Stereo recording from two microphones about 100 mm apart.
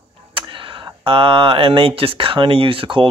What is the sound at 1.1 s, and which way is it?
Speech, 65° right (ahead or behind).